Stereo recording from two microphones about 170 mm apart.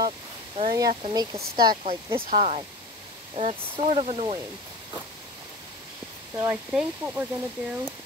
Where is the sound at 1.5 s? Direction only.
25° right (ahead or behind).